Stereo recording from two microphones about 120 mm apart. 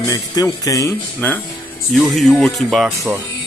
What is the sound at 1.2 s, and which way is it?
Speech, 15° left (ahead or behind).